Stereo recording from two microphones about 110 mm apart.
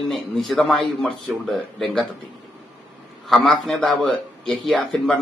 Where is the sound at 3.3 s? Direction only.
Centre (ahead or behind).